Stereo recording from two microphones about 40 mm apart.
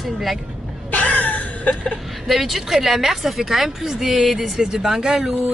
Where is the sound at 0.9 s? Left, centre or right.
Left.